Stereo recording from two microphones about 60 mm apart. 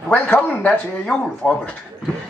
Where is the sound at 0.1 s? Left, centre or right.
Left.